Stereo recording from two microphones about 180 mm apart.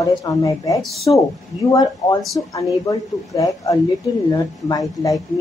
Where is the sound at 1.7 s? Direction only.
20° left (ahead or behind).